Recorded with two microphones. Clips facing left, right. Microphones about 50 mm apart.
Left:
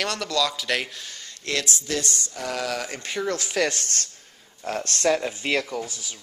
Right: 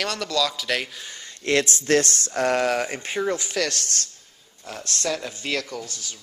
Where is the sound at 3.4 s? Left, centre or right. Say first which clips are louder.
Left 2 dB; centre.